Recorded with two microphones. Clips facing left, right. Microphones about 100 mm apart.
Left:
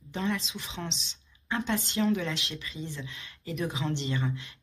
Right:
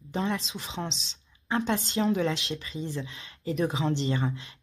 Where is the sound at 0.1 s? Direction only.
30° right (ahead or behind).